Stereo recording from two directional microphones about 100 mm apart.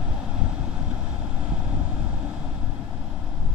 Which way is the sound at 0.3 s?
10° right (ahead or behind).